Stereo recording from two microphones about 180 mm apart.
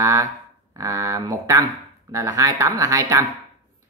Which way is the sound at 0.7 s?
20° right (ahead or behind).